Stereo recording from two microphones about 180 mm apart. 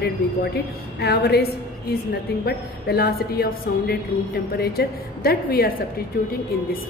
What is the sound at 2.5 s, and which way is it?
A woman's voice, 60° left (ahead or behind).